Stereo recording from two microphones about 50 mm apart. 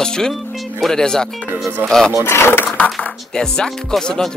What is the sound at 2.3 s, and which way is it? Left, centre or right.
Speech, left.